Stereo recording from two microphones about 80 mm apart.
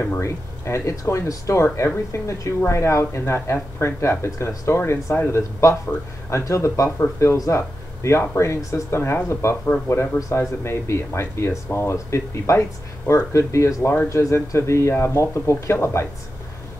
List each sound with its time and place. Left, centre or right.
0.2 s speech: left